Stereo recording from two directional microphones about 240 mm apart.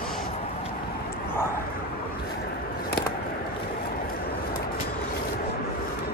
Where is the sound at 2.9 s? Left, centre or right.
Left.